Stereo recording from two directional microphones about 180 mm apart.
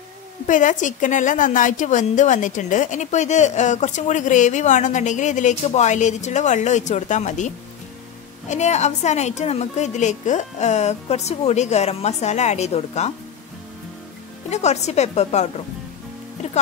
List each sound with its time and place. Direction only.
0.5 s a woman's voice: 45° left (ahead or behind)
14.5 s a woman's voice: 40° left (ahead or behind)